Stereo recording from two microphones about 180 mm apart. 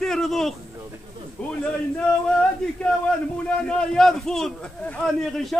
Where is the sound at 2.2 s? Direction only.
5° left (ahead or behind).